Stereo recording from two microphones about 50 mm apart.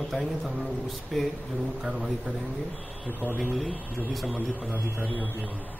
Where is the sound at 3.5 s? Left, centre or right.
Centre.